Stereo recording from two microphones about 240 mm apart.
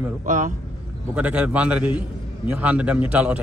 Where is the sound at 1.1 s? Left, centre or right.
Centre.